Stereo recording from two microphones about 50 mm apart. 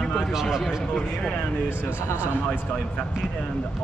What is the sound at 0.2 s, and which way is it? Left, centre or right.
Speech, centre.